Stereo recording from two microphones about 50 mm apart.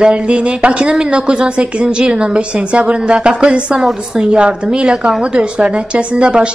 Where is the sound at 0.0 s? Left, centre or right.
Right.